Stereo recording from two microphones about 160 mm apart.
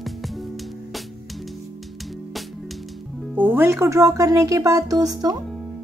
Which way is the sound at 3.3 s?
10° right (ahead or behind).